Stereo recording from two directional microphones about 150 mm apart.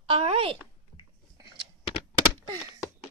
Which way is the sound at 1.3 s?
25° right (ahead or behind).